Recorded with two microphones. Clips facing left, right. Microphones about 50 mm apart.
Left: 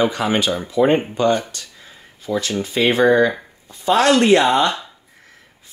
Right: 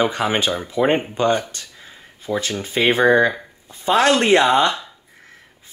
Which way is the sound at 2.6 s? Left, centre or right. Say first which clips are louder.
Left 1 dB; right.